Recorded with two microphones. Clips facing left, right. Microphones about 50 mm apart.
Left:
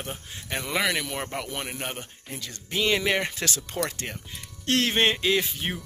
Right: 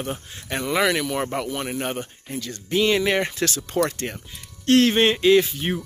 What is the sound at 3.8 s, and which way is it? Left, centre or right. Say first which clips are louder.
Speech: right 8 dB; right.